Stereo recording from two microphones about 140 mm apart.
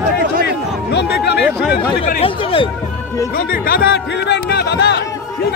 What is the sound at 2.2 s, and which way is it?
Speech, 40° left (ahead or behind).